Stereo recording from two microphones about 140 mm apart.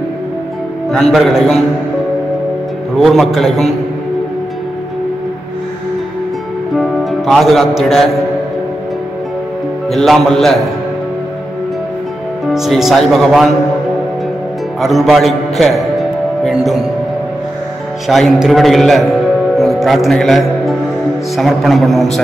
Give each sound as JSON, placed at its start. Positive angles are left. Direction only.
{"t": 0.9, "sound": "a man's voice", "side_deg": 0}
{"t": 3.0, "sound": "a man's voice", "side_deg": 0}
{"t": 6.8, "sound": "music", "side_deg": 0}
{"t": 9.8, "sound": "a man's voice", "side_deg": 0}
{"t": 12.5, "sound": "a man's voice", "side_deg": 0}
{"t": 14.8, "sound": "a man's voice", "side_deg": 0}
{"t": 18.0, "sound": "a man's voice", "side_deg": 0}
{"t": 19.5, "sound": "music", "side_deg": 0}
{"t": 21.4, "sound": "a man's voice", "side_deg": 0}